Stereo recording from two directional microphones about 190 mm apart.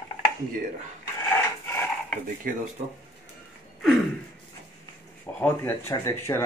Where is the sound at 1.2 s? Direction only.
15° left (ahead or behind).